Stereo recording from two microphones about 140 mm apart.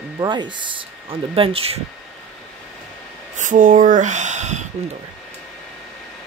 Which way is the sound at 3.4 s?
65° right (ahead or behind).